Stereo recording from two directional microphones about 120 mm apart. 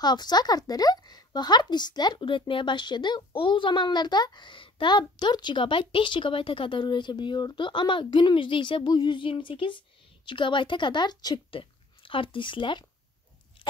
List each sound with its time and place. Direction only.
0.0 s speech: 35° left (ahead or behind)